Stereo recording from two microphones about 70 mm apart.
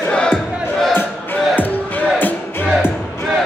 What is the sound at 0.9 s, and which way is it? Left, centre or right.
Battle cry, left.